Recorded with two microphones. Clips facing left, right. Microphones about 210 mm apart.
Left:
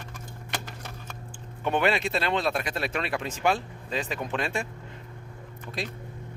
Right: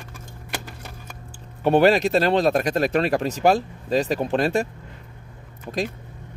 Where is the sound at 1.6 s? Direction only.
35° right (ahead or behind).